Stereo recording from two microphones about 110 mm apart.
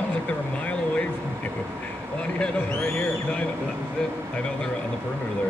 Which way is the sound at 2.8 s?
20° left (ahead or behind).